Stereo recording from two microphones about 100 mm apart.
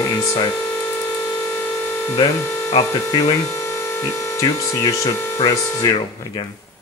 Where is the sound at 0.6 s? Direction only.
25° left (ahead or behind).